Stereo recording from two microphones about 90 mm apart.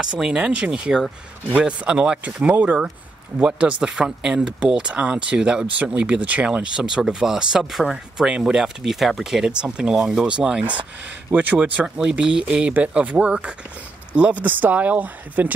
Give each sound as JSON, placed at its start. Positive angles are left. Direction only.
{"t": 0.0, "sound": "speech", "side_deg": -5}